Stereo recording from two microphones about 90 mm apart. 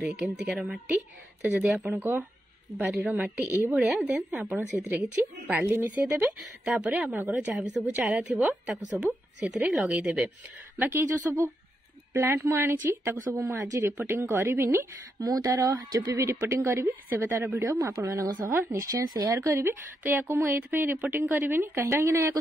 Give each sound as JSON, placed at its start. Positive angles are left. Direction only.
{"t": 0.1, "sound": "a woman's voice", "side_deg": -20}
{"t": 2.8, "sound": "a woman's voice", "side_deg": -5}
{"t": 4.0, "sound": "speech", "side_deg": -20}
{"t": 6.2, "sound": "a woman's voice", "side_deg": -10}
{"t": 10.8, "sound": "speech", "side_deg": -25}
{"t": 15.2, "sound": "a woman's voice", "side_deg": -40}